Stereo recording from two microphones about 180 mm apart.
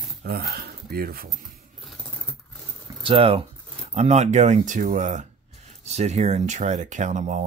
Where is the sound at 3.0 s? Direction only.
30° right (ahead or behind).